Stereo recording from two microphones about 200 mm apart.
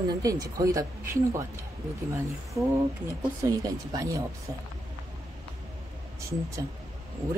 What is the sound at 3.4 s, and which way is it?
Speech, 15° right (ahead or behind).